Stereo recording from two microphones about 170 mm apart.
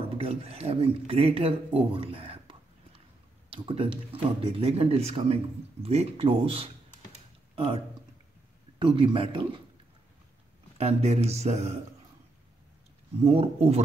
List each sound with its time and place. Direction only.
0.0 s speech: 35° right (ahead or behind)
10.8 s speech: 40° right (ahead or behind)
13.2 s speech: 35° right (ahead or behind)